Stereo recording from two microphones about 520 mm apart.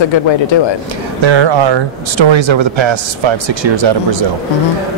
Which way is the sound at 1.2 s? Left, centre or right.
Right.